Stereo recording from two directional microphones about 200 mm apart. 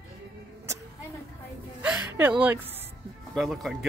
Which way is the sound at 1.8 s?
5° right (ahead or behind).